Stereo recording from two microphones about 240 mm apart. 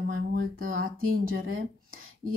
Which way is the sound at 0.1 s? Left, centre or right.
Right.